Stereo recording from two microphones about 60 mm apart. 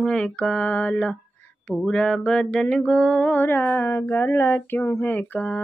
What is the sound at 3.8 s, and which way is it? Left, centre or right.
Speech, left.